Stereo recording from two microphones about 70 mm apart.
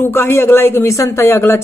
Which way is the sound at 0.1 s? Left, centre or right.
Left.